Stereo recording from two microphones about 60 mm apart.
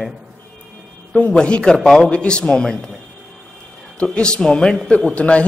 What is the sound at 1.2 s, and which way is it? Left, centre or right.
A man's voice, centre.